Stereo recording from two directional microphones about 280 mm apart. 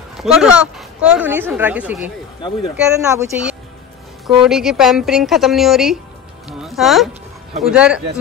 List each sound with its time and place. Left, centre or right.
0.2 s speech: centre
6.6 s music: centre
7.6 s speech: centre